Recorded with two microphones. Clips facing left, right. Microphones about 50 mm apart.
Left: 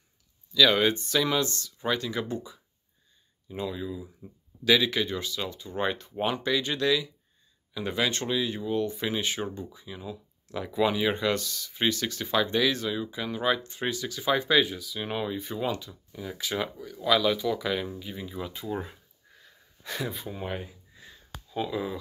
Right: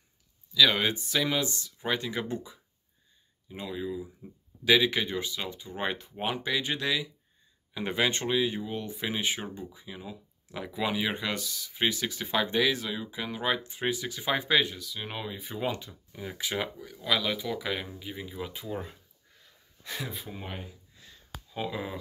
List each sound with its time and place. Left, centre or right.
0.6 s speech: centre; by 2.6 s right
3.4 s speech: centre
7.7 s speech: right
14.0 s speech: right
14.6 s speech: centre
15.9 s speech: right
18.7 s speech: centre
21.5 s speech: centre